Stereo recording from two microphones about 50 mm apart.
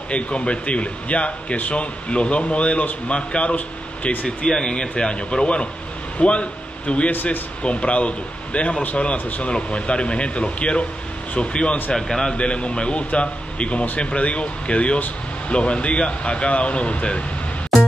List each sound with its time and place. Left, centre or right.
0.1 s speech: left
4.5 s a man's voice: centre
12.4 s speech: left